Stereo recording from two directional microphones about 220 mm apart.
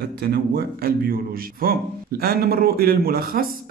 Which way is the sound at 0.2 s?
45° right (ahead or behind).